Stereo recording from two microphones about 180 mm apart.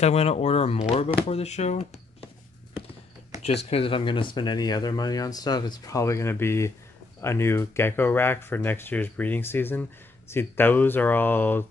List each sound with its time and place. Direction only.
0.0 s speech: 35° left (ahead or behind)
3.4 s speech: 35° left (ahead or behind); by 11.6 s 10° left (ahead or behind)